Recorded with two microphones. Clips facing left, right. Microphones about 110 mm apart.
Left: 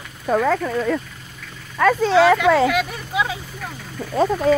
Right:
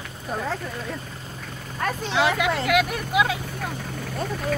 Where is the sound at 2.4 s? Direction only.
10° right (ahead or behind).